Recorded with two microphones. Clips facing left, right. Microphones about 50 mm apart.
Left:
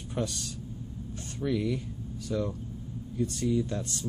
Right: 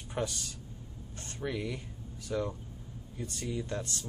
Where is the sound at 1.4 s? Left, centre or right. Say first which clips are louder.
Left 6 dB; centre.